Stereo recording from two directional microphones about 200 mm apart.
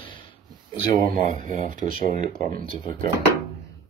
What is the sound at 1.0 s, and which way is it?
Speech, 40° right (ahead or behind).